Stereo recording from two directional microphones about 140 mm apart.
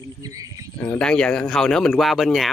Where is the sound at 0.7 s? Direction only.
10° left (ahead or behind).